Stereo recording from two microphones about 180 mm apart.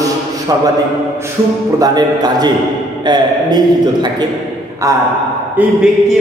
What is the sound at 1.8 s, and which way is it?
A man's voice, 20° right (ahead or behind).